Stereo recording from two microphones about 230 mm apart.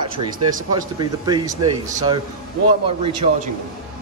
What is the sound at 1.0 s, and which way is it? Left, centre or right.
Speech, centre.